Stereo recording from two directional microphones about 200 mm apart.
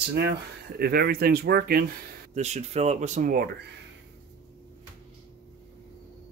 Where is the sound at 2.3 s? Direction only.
35° right (ahead or behind).